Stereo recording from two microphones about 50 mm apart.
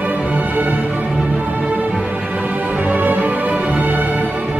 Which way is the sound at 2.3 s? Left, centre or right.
Right.